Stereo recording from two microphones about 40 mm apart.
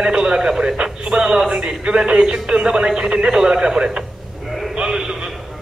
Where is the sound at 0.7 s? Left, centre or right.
Centre.